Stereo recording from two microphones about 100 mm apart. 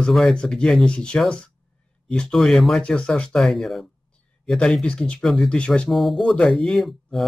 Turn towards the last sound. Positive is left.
turn(degrees=0)  # may be behind; listen again after turning